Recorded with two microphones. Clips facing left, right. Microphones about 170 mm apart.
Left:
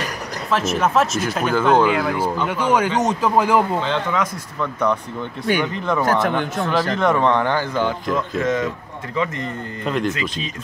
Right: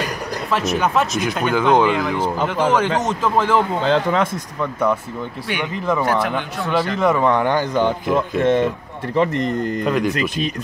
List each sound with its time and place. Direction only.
0.5 s speech: centre (ahead or behind)
3.8 s speech: 35° right (ahead or behind)
6.0 s a man's voice: 40° left (ahead or behind)
7.0 s speech: 5° right (ahead or behind)
8.4 s speech: 30° right (ahead or behind)
9.1 s speech: 65° right (ahead or behind)
9.8 s speech: 5° right (ahead or behind)
10.1 s speech: 60° right (ahead or behind)